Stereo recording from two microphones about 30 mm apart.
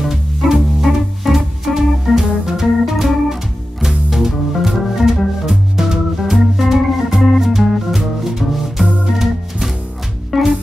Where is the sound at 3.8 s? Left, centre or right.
Centre.